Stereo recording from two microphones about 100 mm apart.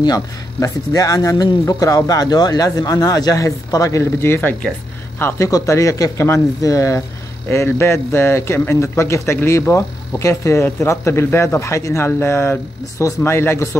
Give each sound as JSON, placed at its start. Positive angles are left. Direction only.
{"t": 0.0, "sound": "speech", "side_deg": 40}